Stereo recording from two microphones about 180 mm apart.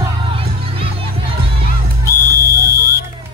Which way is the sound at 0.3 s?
30° right (ahead or behind).